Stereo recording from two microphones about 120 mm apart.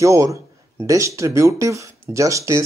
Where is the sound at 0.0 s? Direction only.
25° right (ahead or behind).